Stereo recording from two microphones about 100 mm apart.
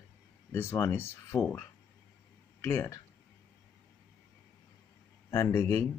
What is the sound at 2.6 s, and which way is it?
Speech, 25° left (ahead or behind).